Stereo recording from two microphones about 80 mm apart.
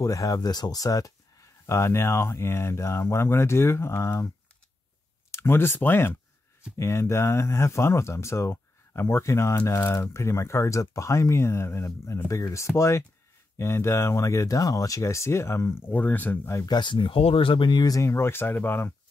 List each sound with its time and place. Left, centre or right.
0.0 s speech: left
5.3 s speech: left
16.6 s speech: left
17.8 s speech: left